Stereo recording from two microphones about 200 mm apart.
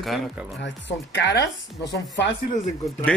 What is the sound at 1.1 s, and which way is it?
Speech, 60° left (ahead or behind).